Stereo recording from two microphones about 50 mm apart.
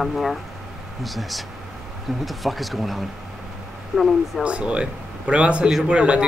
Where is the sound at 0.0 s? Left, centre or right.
Centre.